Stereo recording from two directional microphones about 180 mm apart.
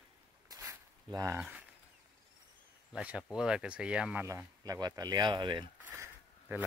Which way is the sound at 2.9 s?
5° right (ahead or behind).